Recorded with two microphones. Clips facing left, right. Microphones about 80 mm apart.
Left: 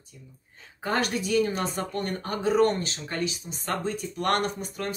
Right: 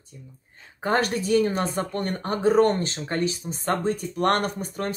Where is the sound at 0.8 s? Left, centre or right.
Right.